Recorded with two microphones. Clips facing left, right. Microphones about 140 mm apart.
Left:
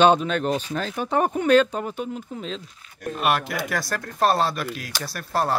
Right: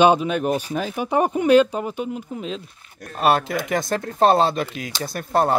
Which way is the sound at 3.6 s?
20° right (ahead or behind).